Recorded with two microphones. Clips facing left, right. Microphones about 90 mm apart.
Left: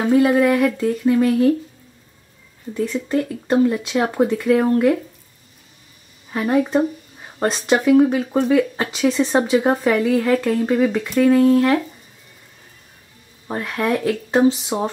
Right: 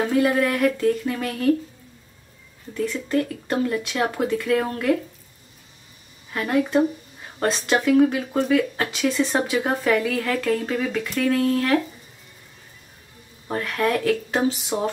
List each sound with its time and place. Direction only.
0.1 s speech: 20° left (ahead or behind)
2.7 s speech: 25° left (ahead or behind)
6.3 s speech: 20° left (ahead or behind)
13.5 s speech: 20° left (ahead or behind)